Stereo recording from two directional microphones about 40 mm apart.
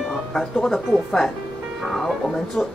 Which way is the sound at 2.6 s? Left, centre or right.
Centre.